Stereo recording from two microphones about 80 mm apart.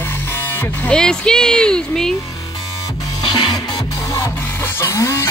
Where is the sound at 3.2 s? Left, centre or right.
Left.